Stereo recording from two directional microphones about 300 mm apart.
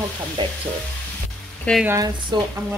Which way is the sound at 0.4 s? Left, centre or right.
Centre.